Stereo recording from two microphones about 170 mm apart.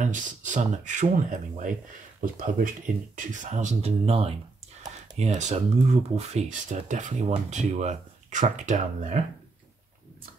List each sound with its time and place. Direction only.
0.0 s speech: 50° right (ahead or behind)